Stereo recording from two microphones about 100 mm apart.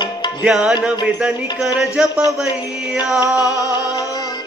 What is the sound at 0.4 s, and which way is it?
Music, 10° right (ahead or behind).